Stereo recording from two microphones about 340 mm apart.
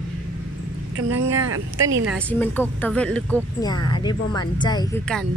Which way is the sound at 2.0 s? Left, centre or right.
Centre.